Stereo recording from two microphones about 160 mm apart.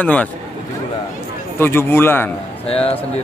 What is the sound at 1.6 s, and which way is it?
Speech, 15° left (ahead or behind).